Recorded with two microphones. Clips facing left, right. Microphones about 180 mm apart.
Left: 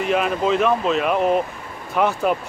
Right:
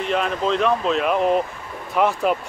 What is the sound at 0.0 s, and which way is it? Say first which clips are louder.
Speech: left 2 dB; 5° left (ahead or behind).